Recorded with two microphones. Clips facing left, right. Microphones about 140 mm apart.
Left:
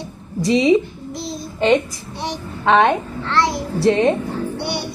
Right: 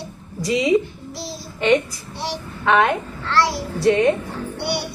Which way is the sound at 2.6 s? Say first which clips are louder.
Left 3 dB; 25° left (ahead or behind).